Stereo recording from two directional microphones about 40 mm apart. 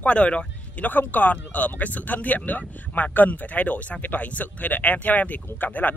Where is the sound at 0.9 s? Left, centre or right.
Left.